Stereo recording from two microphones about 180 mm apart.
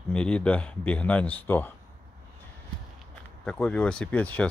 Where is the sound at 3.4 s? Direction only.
5° left (ahead or behind).